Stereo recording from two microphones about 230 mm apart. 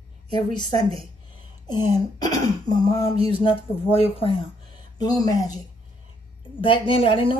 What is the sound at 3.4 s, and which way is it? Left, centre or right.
A woman's voice, left.